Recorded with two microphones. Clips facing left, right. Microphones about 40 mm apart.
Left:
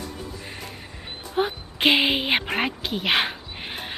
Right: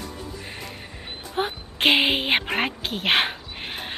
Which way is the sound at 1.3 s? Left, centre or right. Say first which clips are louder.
Left 2 dB; right.